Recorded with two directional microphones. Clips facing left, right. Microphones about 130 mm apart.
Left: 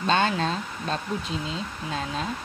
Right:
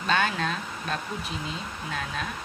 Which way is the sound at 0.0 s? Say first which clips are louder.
Left 3 dB; 30° left (ahead or behind).